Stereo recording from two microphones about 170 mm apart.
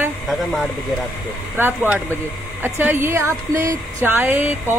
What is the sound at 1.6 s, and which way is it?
Speech, 10° right (ahead or behind).